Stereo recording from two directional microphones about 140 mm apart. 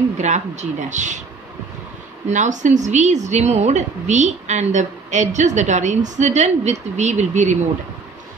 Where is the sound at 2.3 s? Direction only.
60° right (ahead or behind).